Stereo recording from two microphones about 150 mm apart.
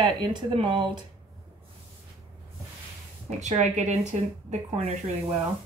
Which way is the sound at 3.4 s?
50° right (ahead or behind).